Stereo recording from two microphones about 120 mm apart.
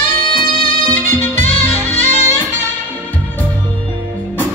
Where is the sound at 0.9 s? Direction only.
15° left (ahead or behind).